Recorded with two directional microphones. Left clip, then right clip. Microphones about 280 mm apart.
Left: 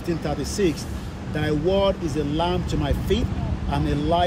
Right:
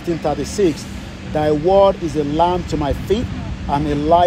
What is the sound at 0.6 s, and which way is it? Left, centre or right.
Speech, centre.